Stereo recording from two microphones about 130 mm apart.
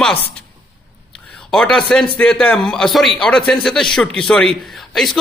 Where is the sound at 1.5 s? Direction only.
5° left (ahead or behind).